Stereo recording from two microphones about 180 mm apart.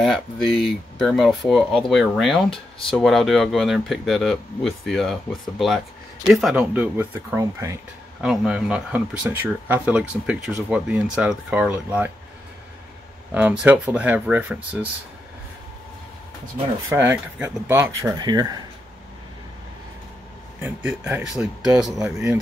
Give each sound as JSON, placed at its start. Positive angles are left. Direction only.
{"t": 0.0, "sound": "speech", "side_deg": 0}
{"t": 8.3, "sound": "speech", "side_deg": -5}
{"t": 13.3, "sound": "speech", "side_deg": -10}
{"t": 16.9, "sound": "speech", "side_deg": -10}
{"t": 20.6, "sound": "speech", "side_deg": -10}